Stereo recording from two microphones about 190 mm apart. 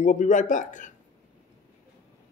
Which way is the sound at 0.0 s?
40° left (ahead or behind).